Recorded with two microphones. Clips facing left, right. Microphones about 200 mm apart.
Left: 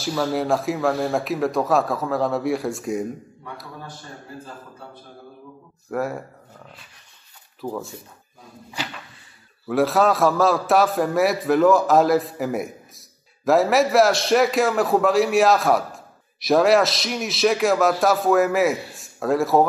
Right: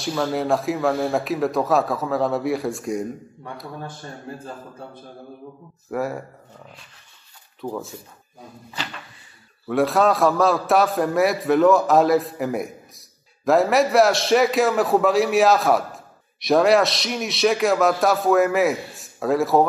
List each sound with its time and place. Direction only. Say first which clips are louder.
0.0 s a man's voice: even; centre (ahead or behind)
5.9 s a man's voice: even; centre (ahead or behind)
9.7 s a man's voice: even; centre (ahead or behind)